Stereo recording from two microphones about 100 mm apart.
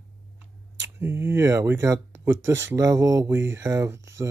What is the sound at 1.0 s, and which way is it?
Speech, 25° right (ahead or behind).